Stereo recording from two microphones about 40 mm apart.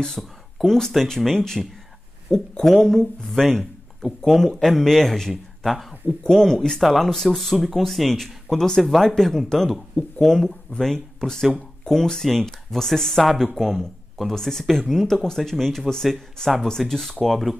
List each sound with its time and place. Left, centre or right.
0.2 s speech: centre
6.2 s speech: centre
6.8 s speech: centre
15.9 s speech: centre
16.4 s speech: centre